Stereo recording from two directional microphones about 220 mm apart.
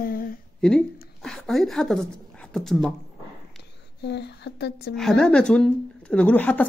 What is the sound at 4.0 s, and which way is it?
Speech, 50° left (ahead or behind).